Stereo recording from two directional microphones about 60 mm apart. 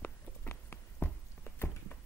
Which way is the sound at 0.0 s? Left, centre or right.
Left.